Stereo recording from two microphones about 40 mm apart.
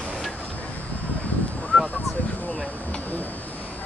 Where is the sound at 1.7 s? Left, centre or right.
Centre.